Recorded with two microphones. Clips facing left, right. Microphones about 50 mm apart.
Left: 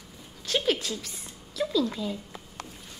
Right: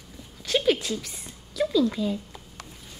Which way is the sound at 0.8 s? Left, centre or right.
Right.